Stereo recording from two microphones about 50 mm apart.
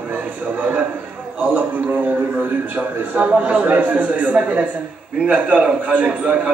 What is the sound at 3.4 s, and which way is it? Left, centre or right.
A man's voice, right.